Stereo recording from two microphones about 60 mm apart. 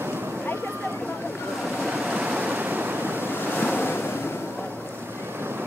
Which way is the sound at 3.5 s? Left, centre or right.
Left.